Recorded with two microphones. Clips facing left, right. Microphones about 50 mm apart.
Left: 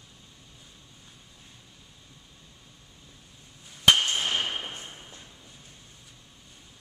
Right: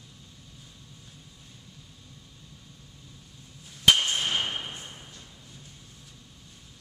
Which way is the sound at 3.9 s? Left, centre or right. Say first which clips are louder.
Even; centre.